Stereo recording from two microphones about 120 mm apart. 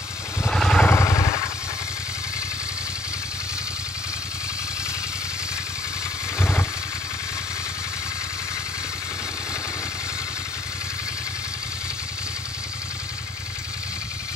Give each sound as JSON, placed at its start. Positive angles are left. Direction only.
{"t": 0.5, "sound": "vehicle", "side_deg": 5}
{"t": 0.8, "sound": "vehicle", "side_deg": 20}
{"t": 6.3, "sound": "vehicle", "side_deg": 20}